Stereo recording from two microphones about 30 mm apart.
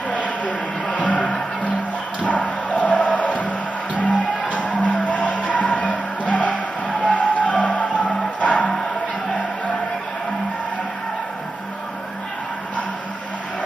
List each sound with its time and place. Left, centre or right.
0.1 s a sound: left
2.2 s music: left
4.1 s music: left